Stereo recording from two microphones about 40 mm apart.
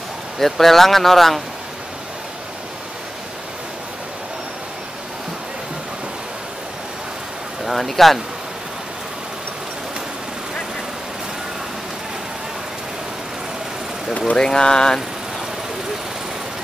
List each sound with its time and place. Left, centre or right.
0.4 s speech: centre
7.6 s speech: centre
14.3 s speech: centre